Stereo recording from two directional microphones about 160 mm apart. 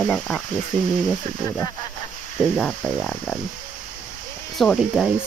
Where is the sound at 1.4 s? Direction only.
20° left (ahead or behind).